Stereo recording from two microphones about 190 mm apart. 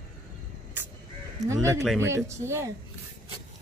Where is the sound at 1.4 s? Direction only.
15° right (ahead or behind).